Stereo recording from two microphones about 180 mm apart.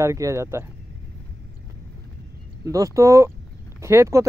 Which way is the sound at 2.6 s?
20° right (ahead or behind).